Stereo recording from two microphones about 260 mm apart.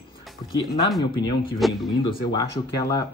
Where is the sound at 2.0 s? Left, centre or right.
Centre.